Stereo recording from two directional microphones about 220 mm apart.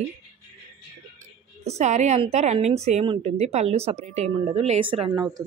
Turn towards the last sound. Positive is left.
turn(degrees=-20)  # may be behind; listen again after turning